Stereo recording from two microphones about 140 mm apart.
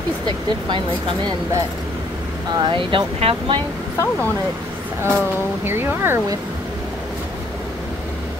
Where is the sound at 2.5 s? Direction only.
30° right (ahead or behind).